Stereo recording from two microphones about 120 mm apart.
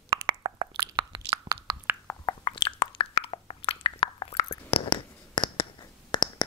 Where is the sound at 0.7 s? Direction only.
40° right (ahead or behind).